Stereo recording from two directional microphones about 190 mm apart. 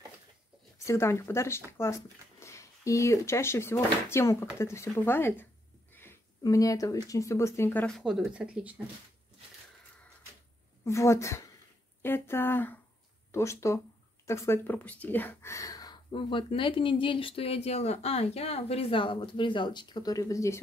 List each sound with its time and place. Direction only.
0.8 s speech: 15° left (ahead or behind)
5.9 s a sound: 15° left (ahead or behind)
7.1 s speech: 15° left (ahead or behind); by 8.8 s 5° right (ahead or behind)
10.8 s speech: 15° left (ahead or behind)